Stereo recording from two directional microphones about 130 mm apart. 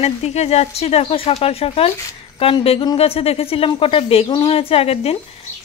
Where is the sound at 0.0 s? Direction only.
55° left (ahead or behind).